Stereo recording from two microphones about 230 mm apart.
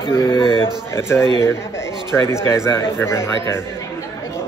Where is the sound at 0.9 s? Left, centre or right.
Centre.